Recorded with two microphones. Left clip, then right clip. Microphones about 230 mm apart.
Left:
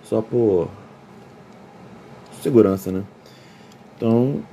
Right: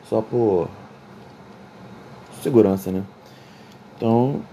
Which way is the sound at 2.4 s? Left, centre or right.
Centre.